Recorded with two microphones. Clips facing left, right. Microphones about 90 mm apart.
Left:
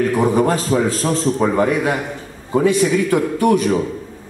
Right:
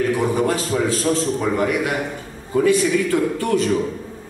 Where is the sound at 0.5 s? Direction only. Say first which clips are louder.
Left 3 dB; 40° left (ahead or behind).